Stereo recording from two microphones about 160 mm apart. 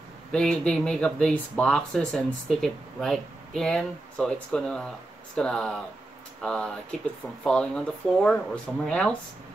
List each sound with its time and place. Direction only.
0.3 s speech: 5° left (ahead or behind)